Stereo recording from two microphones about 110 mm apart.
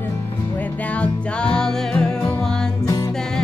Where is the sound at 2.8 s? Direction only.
30° left (ahead or behind).